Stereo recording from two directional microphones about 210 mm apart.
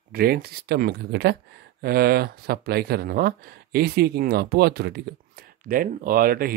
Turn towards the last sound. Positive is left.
turn(degrees=-45)  # may be behind; listen again after turning